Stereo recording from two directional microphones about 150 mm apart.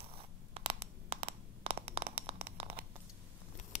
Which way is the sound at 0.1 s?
40° right (ahead or behind).